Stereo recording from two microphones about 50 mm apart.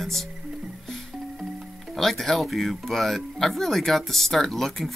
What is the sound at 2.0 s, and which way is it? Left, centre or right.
Speech, centre.